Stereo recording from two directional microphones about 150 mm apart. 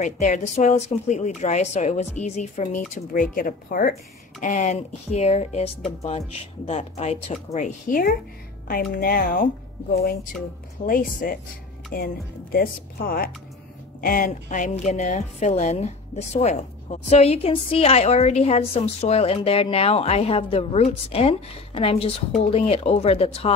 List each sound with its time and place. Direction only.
0.0 s a woman's voice: 50° left (ahead or behind)
2.9 s speech: 65° left (ahead or behind)
4.4 s a woman's voice: 55° left (ahead or behind)
7.5 s speech: 60° left (ahead or behind)
8.6 s speech: 75° left (ahead or behind)
10.9 s speech: 70° left (ahead or behind)
14.0 s a woman's voice: 65° left (ahead or behind); by 23.5 s 40° left (ahead or behind)